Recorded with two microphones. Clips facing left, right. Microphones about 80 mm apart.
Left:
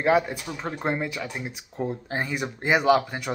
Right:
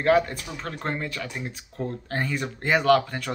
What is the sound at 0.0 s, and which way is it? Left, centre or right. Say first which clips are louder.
Speech: right 1 dB; centre.